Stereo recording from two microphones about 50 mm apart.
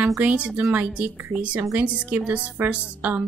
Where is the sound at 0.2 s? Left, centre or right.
Right.